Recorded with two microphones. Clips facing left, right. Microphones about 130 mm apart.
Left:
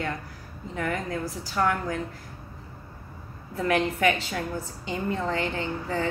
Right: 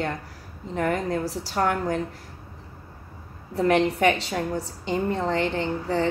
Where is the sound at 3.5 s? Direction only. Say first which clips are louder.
Right 4 dB; 35° right (ahead or behind).